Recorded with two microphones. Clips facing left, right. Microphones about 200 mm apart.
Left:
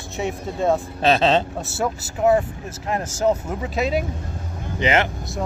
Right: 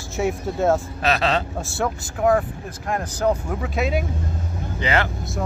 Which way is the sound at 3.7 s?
Centre (ahead or behind).